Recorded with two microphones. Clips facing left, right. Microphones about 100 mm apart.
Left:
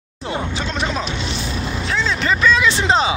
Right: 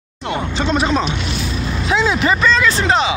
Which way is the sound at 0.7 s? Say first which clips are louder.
Right 6 dB; 5° right (ahead or behind).